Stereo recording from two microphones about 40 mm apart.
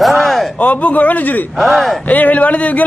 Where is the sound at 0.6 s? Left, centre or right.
Left.